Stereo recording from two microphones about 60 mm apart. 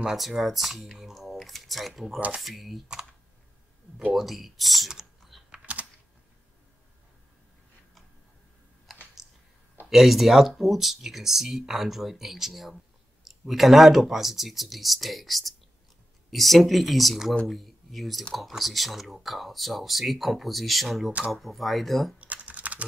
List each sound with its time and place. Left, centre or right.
0.0 s speech: centre
2.1 s speech: right
2.4 s speech: centre
4.1 s typing: centre
8.9 s typing: centre
9.8 s speech: centre
22.2 s typing: right